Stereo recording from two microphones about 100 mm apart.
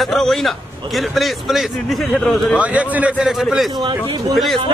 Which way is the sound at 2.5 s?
15° right (ahead or behind).